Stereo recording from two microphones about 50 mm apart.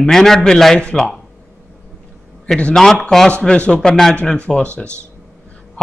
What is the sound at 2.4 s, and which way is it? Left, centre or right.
Speech, centre.